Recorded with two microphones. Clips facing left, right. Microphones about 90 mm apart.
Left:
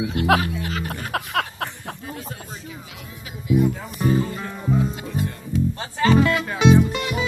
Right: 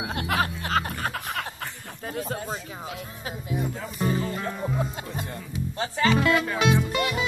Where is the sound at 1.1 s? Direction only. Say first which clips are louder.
Left 7 dB; 80° left.